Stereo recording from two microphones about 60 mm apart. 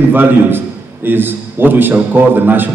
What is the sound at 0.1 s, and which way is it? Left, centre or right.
A man's voice, right.